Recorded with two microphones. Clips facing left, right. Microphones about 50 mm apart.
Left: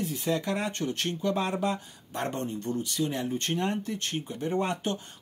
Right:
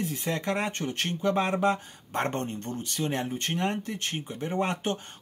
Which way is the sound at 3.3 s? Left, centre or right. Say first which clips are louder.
Even; right.